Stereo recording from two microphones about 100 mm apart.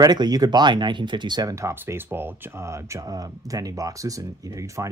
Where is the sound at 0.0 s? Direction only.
40° right (ahead or behind).